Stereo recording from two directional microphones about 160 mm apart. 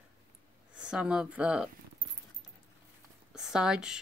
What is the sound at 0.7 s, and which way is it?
Speech, 5° right (ahead or behind).